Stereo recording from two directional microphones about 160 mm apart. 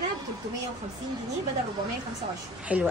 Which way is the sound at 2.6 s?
10° right (ahead or behind).